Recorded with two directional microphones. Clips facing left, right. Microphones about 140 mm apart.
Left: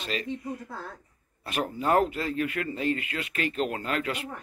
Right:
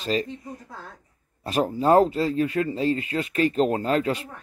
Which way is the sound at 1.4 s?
35° right (ahead or behind).